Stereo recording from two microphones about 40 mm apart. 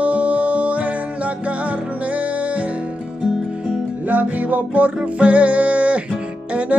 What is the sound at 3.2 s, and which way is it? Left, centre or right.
Music, centre.